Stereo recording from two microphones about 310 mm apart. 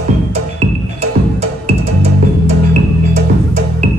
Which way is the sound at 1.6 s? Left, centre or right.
Centre.